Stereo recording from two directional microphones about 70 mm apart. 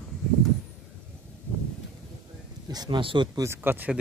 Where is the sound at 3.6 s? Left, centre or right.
Right.